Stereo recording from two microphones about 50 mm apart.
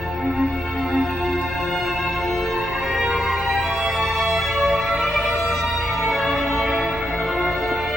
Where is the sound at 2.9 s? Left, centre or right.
Centre.